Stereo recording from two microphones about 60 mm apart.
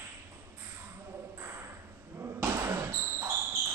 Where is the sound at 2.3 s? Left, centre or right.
Right.